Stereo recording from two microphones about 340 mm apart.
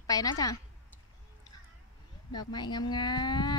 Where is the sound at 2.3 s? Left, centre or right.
Centre.